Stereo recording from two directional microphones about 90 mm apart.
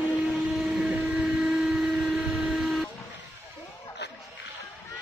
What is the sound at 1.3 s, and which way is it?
Vehicle, 5° right (ahead or behind).